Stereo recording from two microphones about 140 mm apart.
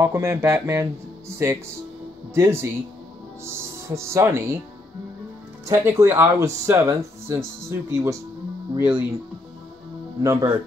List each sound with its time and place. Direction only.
0.0 s speech: 20° right (ahead or behind)
2.3 s speech: 20° right (ahead or behind)
5.7 s speech: 20° right (ahead or behind)
10.2 s speech: 20° right (ahead or behind)